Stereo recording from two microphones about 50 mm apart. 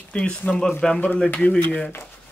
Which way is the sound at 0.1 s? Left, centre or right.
Left.